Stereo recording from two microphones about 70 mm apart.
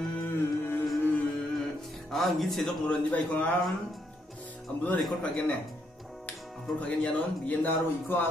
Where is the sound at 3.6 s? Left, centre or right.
Centre.